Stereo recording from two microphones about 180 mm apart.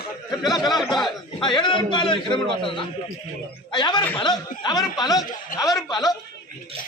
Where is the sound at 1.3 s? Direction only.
25° left (ahead or behind).